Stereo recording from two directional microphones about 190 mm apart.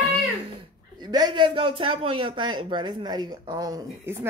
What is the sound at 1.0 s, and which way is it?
Speech, 20° right (ahead or behind).